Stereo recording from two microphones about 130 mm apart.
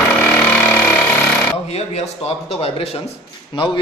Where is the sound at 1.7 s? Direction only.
55° left (ahead or behind).